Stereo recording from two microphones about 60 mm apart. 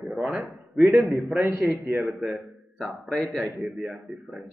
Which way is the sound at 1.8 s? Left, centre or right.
Right.